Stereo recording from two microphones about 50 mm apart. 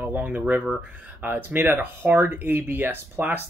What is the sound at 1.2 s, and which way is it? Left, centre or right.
Speech, right.